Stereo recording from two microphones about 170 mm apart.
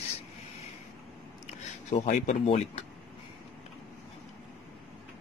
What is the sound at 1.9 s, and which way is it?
Speech, 45° left (ahead or behind).